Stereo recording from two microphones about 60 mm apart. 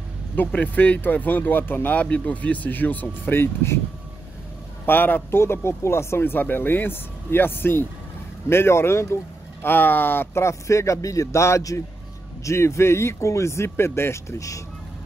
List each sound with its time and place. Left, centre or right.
0.4 s speech: left
2.0 s speech: centre; by 3.8 s left
4.8 s speech: left
5.4 s a man's voice: left
9.7 s speech: left
10.4 s a man's voice: left